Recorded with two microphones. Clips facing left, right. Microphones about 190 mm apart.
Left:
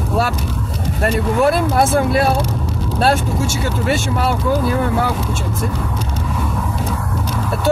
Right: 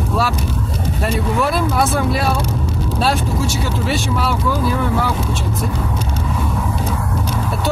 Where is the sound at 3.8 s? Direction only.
50° left (ahead or behind).